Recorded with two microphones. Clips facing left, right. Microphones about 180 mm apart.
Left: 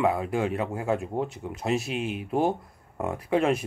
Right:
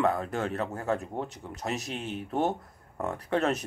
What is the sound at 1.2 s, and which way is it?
Speech, 40° right (ahead or behind).